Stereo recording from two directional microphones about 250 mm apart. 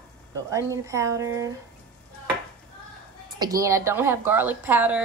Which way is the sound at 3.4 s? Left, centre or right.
Centre.